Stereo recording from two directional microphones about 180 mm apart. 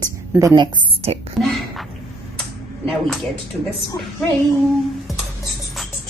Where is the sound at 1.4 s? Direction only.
Centre (ahead or behind).